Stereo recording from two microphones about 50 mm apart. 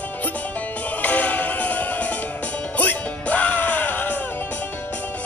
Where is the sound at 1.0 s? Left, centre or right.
Left.